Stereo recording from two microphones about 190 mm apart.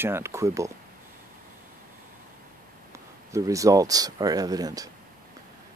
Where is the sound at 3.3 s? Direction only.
15° right (ahead or behind).